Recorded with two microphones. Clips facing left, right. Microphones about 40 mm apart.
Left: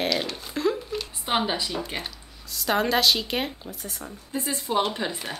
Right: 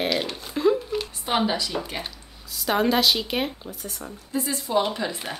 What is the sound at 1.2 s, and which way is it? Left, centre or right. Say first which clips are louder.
Speech: right 1 dB; centre.